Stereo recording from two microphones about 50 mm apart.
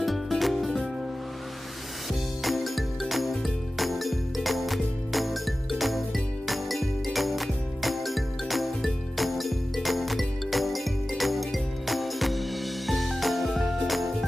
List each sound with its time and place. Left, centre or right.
0.0 s music: centre
2.4 s music: centre